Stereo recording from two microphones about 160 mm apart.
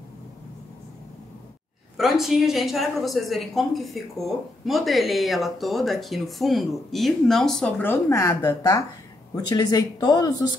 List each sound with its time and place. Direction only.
2.0 s a woman's voice: centre (ahead or behind)
7.8 s speech: 15° left (ahead or behind)